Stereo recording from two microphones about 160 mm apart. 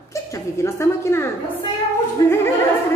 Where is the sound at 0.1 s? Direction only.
20° left (ahead or behind).